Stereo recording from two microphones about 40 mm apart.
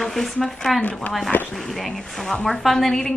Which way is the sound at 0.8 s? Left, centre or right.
Left.